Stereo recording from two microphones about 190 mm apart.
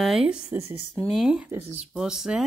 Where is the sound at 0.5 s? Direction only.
15° right (ahead or behind).